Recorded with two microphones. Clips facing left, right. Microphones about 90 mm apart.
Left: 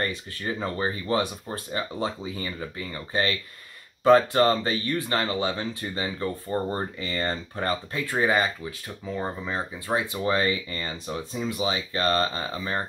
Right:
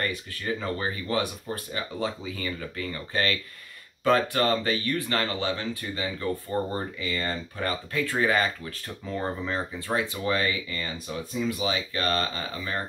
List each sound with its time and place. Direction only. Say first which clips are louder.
0.0 s speech: left 1 dB; 25° left (ahead or behind)
8.0 s speech: even; 20° left (ahead or behind)
8.8 s speech: right 1 dB; 5° left (ahead or behind)
9.8 s speech: left 2 dB; 25° left (ahead or behind)